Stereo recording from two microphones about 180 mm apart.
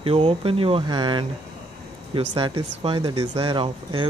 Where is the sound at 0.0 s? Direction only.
30° right (ahead or behind).